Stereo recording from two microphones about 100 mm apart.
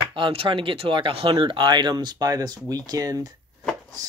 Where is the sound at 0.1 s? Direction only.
65° right (ahead or behind).